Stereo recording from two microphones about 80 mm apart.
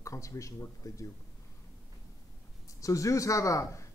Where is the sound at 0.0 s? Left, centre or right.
Left.